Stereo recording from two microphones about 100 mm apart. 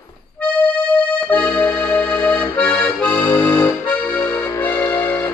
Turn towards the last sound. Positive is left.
turn(degrees=25)  # may be behind; listen again after turning